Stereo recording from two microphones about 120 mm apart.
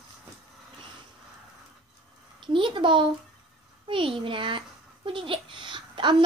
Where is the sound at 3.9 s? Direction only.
45° right (ahead or behind).